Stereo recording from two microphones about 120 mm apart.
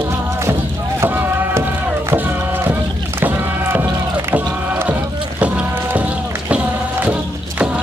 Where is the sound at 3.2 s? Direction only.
20° right (ahead or behind).